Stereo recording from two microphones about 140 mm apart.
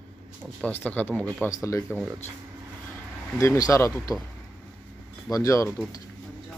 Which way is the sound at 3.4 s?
20° left (ahead or behind).